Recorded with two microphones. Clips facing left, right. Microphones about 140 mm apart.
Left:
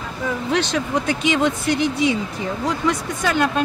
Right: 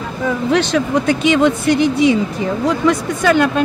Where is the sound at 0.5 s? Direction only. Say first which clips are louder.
Right 6 dB; 70° right (ahead or behind).